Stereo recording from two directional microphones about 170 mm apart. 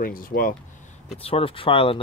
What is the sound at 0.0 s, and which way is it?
Speech, 55° left (ahead or behind).